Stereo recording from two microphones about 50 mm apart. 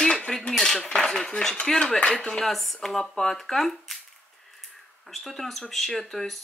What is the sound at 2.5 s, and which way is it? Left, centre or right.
Speech, centre.